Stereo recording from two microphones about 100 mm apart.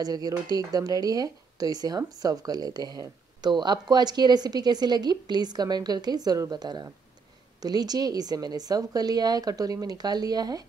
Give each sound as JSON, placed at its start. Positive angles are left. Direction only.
{"t": 0.0, "sound": "a woman's voice", "side_deg": -40}